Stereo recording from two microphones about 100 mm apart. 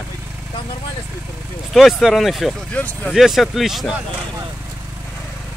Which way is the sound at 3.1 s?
Centre (ahead or behind).